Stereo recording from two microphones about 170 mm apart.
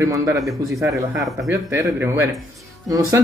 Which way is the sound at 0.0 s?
15° right (ahead or behind).